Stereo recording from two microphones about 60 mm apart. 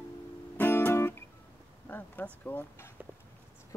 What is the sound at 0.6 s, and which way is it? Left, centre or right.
Music, left.